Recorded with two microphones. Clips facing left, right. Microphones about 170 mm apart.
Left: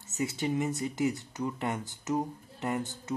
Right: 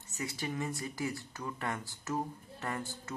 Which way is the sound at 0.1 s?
25° left (ahead or behind).